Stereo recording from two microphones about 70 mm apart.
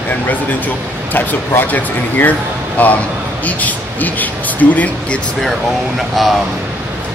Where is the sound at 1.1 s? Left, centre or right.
Left.